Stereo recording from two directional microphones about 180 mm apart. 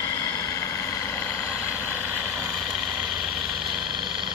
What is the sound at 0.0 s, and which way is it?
Vehicle, 20° left (ahead or behind).